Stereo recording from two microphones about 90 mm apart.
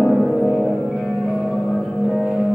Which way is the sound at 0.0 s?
Centre (ahead or behind).